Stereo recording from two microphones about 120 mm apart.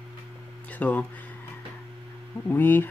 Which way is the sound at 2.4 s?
15° left (ahead or behind).